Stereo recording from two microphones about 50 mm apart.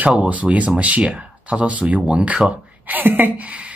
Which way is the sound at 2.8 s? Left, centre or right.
Right.